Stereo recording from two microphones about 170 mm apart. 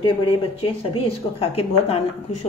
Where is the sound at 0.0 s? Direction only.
30° left (ahead or behind).